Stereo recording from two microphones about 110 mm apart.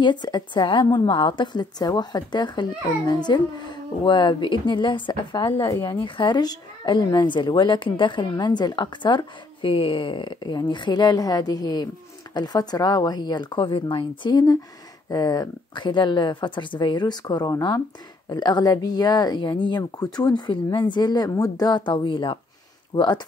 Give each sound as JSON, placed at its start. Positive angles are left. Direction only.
{"t": 0.0, "sound": "speech", "side_deg": 40}
{"t": 5.6, "sound": "speech", "side_deg": 30}
{"t": 6.0, "sound": "speech", "side_deg": 45}